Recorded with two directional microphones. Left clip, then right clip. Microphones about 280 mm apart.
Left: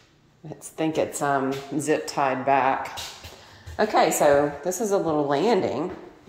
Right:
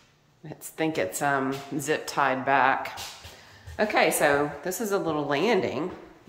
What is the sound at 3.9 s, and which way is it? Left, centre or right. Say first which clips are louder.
Speech: left 3 dB; centre.